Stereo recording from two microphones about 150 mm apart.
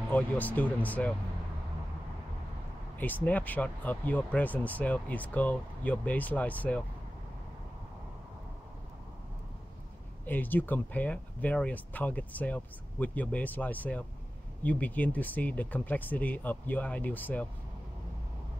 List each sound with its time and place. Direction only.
0.1 s speech: 10° left (ahead or behind)
3.0 s speech: 10° left (ahead or behind)
10.2 s speech: 10° left (ahead or behind)